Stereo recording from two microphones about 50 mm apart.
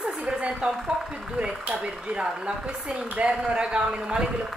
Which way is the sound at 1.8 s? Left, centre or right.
Centre.